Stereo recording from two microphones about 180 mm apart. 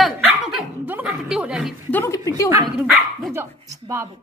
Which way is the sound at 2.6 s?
Centre (ahead or behind).